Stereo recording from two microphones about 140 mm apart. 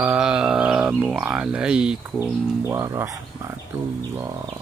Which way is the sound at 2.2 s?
20° right (ahead or behind).